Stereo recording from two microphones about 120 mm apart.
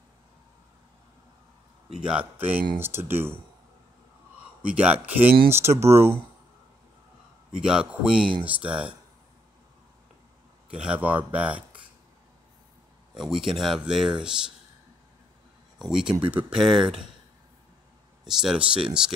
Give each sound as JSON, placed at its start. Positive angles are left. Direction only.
{"t": 2.0, "sound": "speech", "side_deg": -10}
{"t": 4.6, "sound": "speech", "side_deg": -10}
{"t": 7.6, "sound": "speech", "side_deg": -5}
{"t": 8.2, "sound": "speech", "side_deg": -45}
{"t": 8.5, "sound": "speech", "side_deg": -10}
{"t": 10.7, "sound": "speech", "side_deg": -10}
{"t": 13.1, "sound": "speech", "side_deg": -5}
{"t": 15.8, "sound": "speech", "side_deg": -5}
{"t": 18.2, "sound": "speech", "side_deg": -5}